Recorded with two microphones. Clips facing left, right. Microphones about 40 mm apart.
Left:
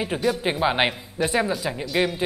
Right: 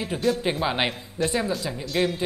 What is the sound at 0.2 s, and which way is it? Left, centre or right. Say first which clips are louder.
Speech: left 1 dB; centre.